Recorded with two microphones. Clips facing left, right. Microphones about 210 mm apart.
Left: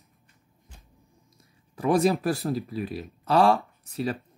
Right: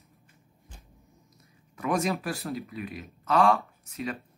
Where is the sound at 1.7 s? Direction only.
35° left (ahead or behind).